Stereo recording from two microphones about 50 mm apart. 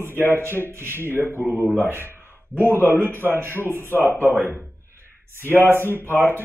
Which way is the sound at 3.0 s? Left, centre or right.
Right.